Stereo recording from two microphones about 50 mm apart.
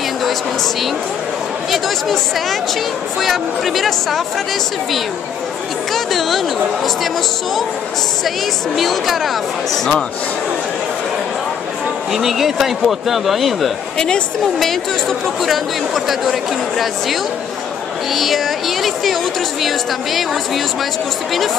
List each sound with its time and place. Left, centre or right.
1.7 s speech: centre
5.9 s speech: centre
8.7 s speech: centre
12.1 s speech: centre
13.9 s speech: centre